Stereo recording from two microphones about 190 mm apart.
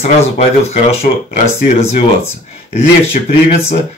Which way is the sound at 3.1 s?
30° left (ahead or behind).